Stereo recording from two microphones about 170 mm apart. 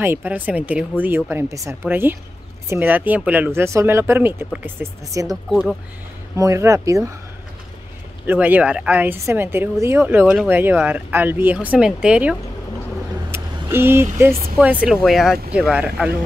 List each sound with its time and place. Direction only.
0.0 s speech: 10° right (ahead or behind)
5.3 s speech: centre (ahead or behind)
6.3 s speech: 15° right (ahead or behind)
8.3 s speech: 10° right (ahead or behind)
13.3 s vehicle: 15° right (ahead or behind)
14.6 s speech: 10° right (ahead or behind)